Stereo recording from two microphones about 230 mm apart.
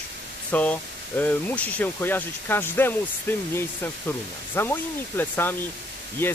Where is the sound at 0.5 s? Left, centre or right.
Centre.